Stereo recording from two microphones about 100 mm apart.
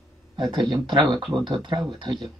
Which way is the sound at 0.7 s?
45° right (ahead or behind).